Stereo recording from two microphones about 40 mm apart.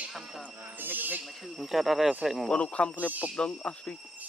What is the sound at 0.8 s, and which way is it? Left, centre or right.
Speech, right.